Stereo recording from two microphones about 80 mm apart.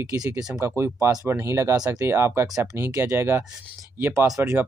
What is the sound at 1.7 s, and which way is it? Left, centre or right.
Speech, right.